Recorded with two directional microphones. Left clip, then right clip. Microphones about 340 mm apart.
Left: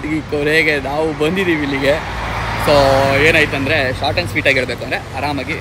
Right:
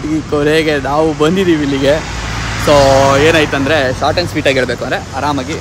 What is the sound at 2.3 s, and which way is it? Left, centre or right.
Vehicle, centre.